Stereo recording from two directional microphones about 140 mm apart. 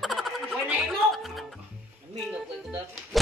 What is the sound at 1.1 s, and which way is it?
Speech, centre (ahead or behind).